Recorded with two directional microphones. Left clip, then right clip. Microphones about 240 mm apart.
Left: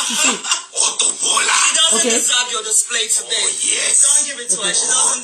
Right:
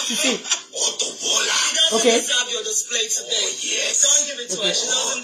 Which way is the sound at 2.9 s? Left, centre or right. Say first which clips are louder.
Left 1 dB; centre.